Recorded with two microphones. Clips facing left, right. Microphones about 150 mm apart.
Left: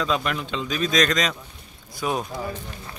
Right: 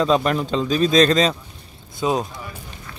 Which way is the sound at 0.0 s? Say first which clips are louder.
Right 7 dB; 35° right (ahead or behind).